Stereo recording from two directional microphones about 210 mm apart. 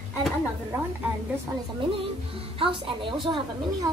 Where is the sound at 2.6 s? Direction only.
25° right (ahead or behind).